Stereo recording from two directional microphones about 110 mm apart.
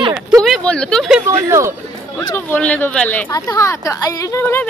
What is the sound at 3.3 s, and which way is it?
Speech, 30° left (ahead or behind).